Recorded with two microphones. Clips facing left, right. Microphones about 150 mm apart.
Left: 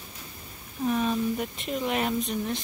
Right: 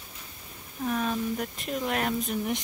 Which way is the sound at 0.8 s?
Centre (ahead or behind).